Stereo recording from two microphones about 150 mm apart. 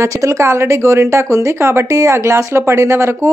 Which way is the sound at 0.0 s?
20° right (ahead or behind).